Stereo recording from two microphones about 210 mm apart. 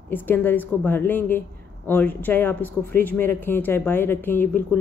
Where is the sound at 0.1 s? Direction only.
10° left (ahead or behind).